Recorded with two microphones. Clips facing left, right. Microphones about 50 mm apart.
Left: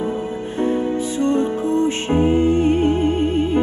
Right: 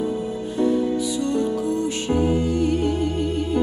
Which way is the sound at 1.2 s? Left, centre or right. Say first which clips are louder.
Left 7 dB; left.